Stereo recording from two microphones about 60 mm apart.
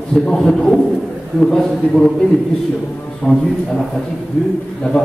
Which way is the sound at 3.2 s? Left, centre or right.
Centre.